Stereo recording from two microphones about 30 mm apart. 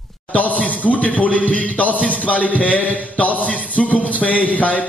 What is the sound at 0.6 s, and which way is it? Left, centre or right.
Speech, left.